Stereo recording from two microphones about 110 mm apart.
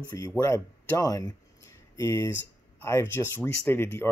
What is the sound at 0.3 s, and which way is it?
Speech, 20° left (ahead or behind).